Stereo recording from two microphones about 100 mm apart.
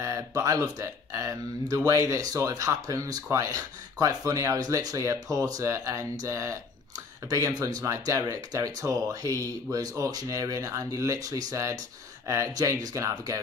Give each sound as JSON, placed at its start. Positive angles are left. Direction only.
{"t": 0.0, "sound": "speech", "side_deg": -30}